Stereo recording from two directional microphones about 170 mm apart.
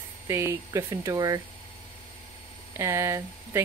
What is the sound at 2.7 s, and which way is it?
Speech, 15° right (ahead or behind).